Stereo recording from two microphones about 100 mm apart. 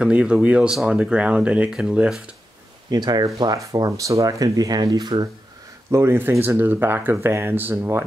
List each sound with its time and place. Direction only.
0.0 s speech: 10° right (ahead or behind)
2.9 s speech: 45° right (ahead or behind)
5.9 s speech: 25° right (ahead or behind)